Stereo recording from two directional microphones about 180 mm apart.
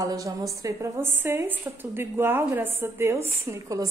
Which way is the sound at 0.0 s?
20° right (ahead or behind).